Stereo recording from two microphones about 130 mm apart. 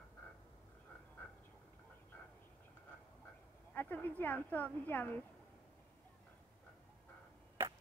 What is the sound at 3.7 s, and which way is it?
Speech, 15° left (ahead or behind).